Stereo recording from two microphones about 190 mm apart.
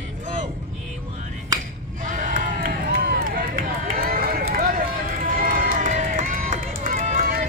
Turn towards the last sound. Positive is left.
turn(degrees=-40)  # may be behind; listen again after turning